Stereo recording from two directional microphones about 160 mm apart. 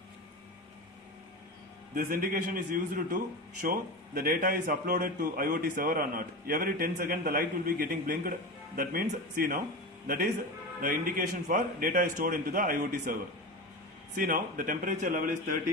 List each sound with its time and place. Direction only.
2.0 s a man's voice: 60° right (ahead or behind)
10.8 s a man's voice: 60° right (ahead or behind)
14.1 s a man's voice: 60° right (ahead or behind)